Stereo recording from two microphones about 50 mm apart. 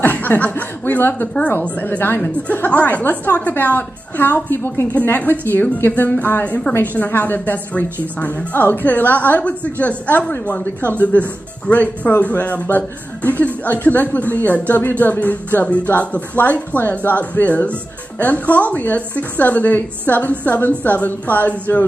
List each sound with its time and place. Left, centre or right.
0.0 s a woman's voice: left
2.4 s a woman's voice: left